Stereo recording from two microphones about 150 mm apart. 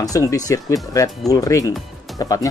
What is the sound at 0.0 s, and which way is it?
Speech, 20° left (ahead or behind).